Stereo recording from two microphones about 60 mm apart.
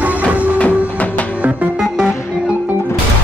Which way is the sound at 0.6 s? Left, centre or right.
Left.